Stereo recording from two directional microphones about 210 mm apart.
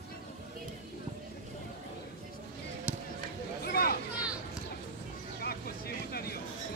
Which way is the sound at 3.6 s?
45° left (ahead or behind).